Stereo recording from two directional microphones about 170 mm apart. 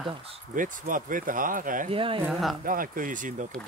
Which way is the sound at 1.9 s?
30° right (ahead or behind).